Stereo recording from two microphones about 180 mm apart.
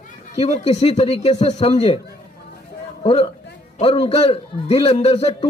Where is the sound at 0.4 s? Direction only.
35° left (ahead or behind).